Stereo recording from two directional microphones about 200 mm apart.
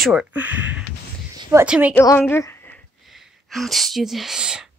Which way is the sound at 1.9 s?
10° left (ahead or behind).